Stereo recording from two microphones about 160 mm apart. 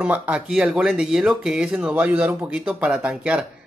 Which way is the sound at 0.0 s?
5° right (ahead or behind).